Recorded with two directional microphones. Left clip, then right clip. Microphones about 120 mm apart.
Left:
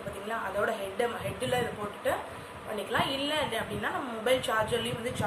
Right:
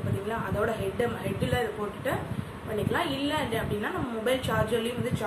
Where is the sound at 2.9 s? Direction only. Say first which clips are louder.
Left 1 dB; 15° left (ahead or behind).